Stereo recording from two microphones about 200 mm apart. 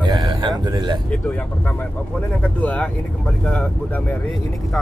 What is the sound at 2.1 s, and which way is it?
Speech, 5° left (ahead or behind).